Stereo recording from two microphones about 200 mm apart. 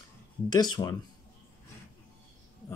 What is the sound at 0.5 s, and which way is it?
Speech, 20° left (ahead or behind).